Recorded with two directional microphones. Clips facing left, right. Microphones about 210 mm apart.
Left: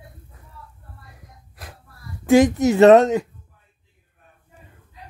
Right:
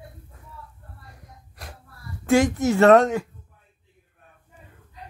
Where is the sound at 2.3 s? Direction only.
20° left (ahead or behind).